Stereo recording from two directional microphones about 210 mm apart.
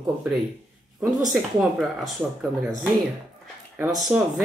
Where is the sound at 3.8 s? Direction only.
20° right (ahead or behind).